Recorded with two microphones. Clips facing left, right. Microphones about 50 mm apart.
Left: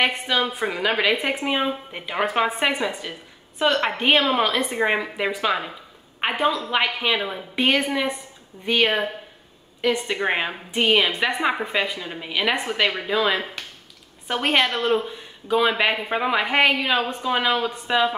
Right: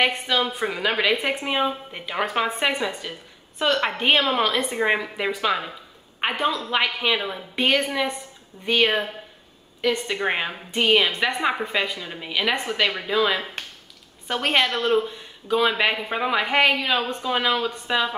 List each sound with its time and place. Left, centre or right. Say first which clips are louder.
0.0 s a woman's voice: even; centre
6.3 s a woman's voice: left 3 dB; left
6.7 s a woman's voice: even; centre